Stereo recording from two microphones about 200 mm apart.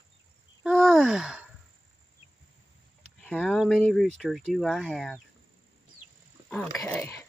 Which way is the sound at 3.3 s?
Centre (ahead or behind).